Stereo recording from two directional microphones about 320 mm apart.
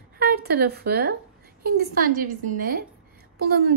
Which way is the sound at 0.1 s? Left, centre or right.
Right.